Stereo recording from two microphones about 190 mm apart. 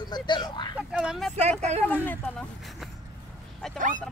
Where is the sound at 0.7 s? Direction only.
5° right (ahead or behind).